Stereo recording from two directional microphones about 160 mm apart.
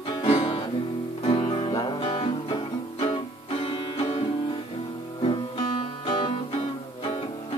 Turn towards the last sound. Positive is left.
turn(degrees=35)  # may be behind; listen again after turning